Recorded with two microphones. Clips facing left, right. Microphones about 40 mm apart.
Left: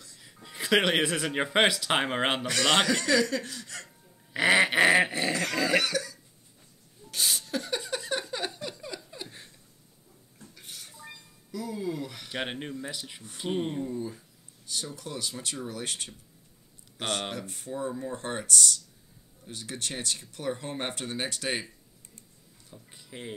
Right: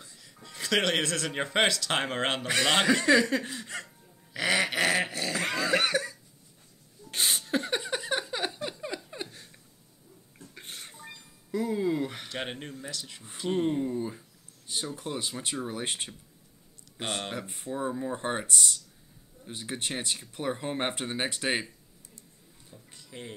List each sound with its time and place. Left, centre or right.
0.2 s speech: centre
2.4 s speech: right
4.3 s dog: left
5.3 s dog: right
5.8 s cough: right
7.1 s a sound: right
10.5 s a sound: right
12.3 s speech: centre
13.8 s speech: centre
17.3 s speech: right
22.9 s a sound: centre